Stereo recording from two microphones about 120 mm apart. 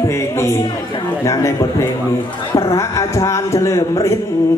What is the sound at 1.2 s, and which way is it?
A man's voice, 25° left (ahead or behind).